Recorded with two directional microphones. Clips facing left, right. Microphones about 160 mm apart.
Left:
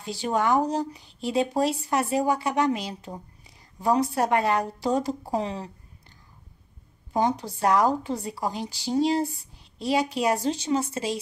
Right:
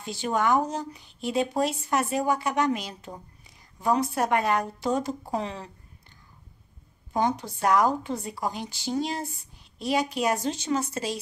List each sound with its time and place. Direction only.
0.0 s speech: 35° left (ahead or behind)
7.2 s speech: 35° left (ahead or behind)